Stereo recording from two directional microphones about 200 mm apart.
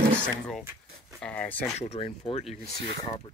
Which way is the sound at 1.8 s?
30° left (ahead or behind).